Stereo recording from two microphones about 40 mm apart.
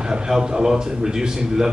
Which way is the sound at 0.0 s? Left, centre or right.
Centre.